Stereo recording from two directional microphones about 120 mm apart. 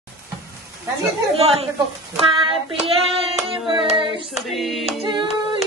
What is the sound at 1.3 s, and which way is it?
Speech, 55° right (ahead or behind).